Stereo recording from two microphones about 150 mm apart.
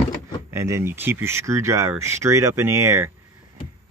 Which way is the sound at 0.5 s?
15° right (ahead or behind).